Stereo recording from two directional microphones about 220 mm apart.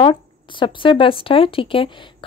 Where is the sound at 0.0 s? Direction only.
20° left (ahead or behind).